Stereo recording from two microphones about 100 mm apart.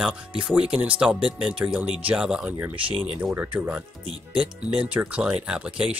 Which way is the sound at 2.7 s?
65° right (ahead or behind).